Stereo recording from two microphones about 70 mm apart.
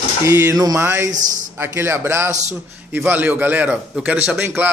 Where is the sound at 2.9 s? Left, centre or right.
Right.